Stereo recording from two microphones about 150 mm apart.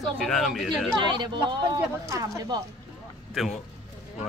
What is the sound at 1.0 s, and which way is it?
Speech, 30° right (ahead or behind).